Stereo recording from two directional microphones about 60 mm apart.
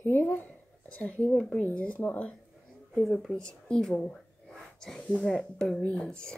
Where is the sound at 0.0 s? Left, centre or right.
Left.